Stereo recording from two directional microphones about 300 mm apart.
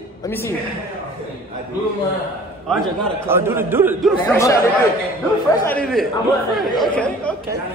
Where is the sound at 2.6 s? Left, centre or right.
Centre.